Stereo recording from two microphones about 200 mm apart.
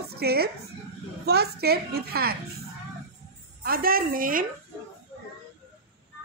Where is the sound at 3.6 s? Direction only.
45° right (ahead or behind).